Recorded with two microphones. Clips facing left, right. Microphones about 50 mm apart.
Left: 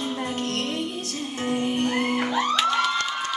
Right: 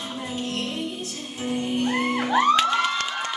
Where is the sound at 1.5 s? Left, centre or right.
Left.